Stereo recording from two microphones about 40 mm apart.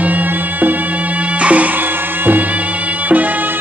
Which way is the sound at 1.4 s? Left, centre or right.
Right.